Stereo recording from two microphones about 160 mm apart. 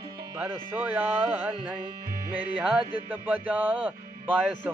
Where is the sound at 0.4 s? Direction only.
10° right (ahead or behind).